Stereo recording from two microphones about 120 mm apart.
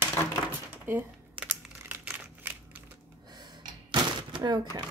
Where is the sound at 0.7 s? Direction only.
15° right (ahead or behind).